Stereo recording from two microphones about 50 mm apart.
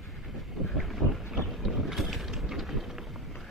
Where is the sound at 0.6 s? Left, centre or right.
Centre.